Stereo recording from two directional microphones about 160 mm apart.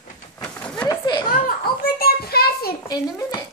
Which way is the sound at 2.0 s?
75° left (ahead or behind).